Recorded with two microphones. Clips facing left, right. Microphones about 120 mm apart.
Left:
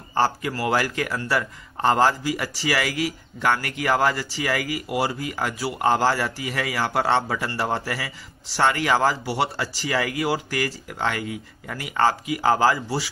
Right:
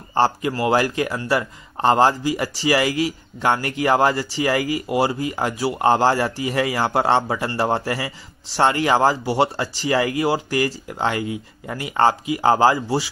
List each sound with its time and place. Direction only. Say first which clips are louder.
0.1 s a man's voice: right 3 dB; 25° right (ahead or behind)